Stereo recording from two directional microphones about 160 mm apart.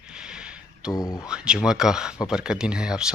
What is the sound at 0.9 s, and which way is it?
Speech, 15° left (ahead or behind).